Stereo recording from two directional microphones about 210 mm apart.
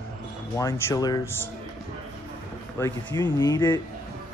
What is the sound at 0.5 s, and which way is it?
Speech, 15° left (ahead or behind).